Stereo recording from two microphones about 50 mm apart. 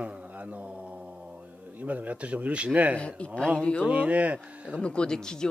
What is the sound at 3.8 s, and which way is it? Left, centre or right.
Speech, right.